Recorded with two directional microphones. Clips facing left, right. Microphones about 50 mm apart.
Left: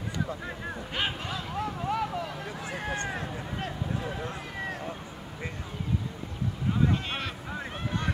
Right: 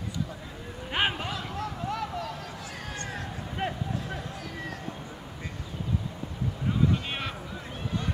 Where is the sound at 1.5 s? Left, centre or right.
Centre.